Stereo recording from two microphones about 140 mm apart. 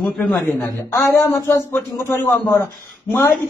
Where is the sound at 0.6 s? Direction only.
20° left (ahead or behind).